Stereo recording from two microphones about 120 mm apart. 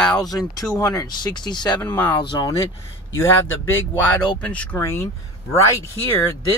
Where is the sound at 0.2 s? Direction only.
30° left (ahead or behind).